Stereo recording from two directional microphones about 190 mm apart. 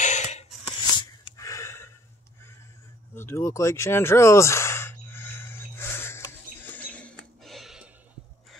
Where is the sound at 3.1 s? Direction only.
15° left (ahead or behind).